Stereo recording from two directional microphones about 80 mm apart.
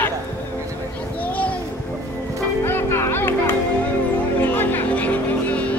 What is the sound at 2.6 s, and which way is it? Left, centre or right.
Music, left.